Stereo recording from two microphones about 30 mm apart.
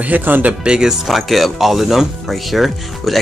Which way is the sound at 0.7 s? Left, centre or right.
Right.